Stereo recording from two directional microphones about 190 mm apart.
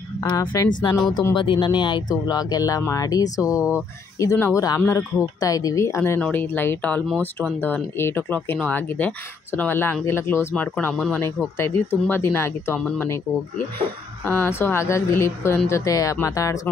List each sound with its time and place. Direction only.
0.2 s speech: 25° left (ahead or behind)
0.9 s speech: centre (ahead or behind)
1.3 s speech: 25° left (ahead or behind)